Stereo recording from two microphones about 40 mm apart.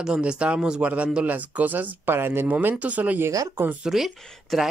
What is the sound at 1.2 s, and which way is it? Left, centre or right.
Speech, right.